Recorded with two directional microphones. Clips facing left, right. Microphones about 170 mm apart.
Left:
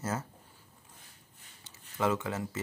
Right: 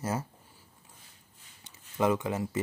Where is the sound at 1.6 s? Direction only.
15° right (ahead or behind).